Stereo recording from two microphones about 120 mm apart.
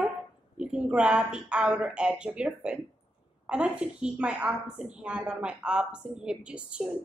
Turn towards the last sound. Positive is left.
turn(degrees=-10)  # may be behind; listen again after turning